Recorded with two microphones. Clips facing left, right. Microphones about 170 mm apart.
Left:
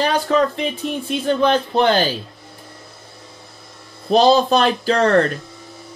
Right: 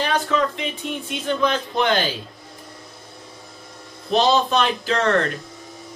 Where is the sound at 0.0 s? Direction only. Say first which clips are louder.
Left 4 dB; 40° left (ahead or behind).